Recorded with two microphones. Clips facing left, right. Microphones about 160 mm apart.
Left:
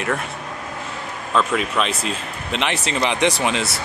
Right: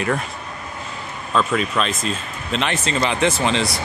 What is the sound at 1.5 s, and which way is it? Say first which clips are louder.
Speech: even; 10° left (ahead or behind).